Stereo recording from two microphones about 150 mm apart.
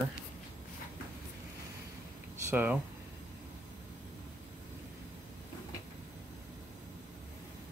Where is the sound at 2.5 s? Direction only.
10° right (ahead or behind).